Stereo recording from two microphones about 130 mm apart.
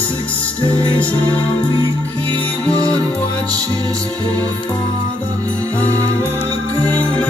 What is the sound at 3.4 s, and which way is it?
Music, 25° right (ahead or behind).